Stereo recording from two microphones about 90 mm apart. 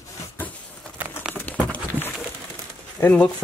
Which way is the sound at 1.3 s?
20° left (ahead or behind).